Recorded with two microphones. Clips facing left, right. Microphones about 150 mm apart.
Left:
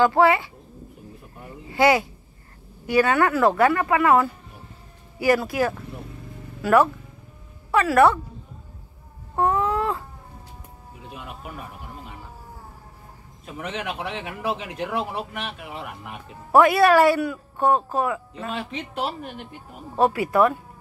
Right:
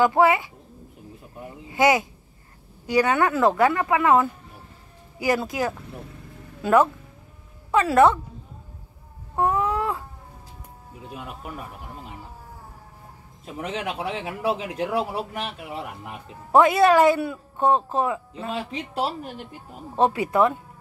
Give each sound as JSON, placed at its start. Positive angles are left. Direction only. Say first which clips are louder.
{"t": 0.0, "sound": "speech", "louder": "left 1 dB", "side_deg": -15}
{"t": 1.7, "sound": "speech", "louder": "left 1 dB", "side_deg": -20}
{"t": 9.4, "sound": "a sound", "louder": "left 1 dB", "side_deg": -10}
{"t": 13.6, "sound": "a man's voice", "louder": "right 1 dB", "side_deg": -35}
{"t": 16.5, "sound": "speech", "louder": "left 1 dB", "side_deg": -20}
{"t": 20.0, "sound": "speech", "louder": "left 1 dB", "side_deg": -25}